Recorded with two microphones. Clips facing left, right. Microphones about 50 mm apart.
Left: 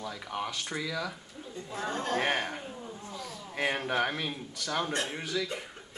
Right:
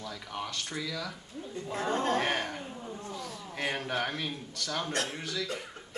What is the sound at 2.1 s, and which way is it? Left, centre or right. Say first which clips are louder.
Speech: left 1 dB; centre.